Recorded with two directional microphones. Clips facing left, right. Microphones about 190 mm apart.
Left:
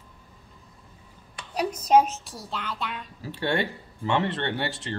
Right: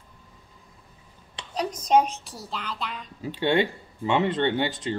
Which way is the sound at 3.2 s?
20° right (ahead or behind).